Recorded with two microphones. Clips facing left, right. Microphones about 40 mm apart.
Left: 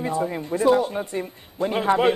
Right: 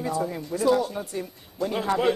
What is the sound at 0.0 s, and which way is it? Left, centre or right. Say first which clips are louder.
Speech: left 3 dB; left.